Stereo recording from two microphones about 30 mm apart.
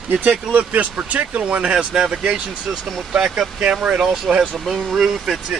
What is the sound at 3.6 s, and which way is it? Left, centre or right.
Speech, right.